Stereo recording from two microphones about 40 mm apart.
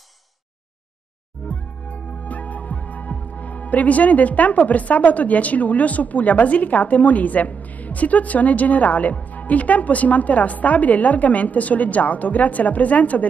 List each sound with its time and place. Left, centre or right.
1.5 s music: left